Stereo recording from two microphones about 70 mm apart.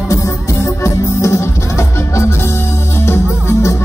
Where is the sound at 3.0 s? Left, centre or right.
Left.